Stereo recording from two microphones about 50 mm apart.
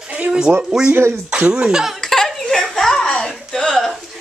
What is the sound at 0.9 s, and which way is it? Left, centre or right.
Speech, right.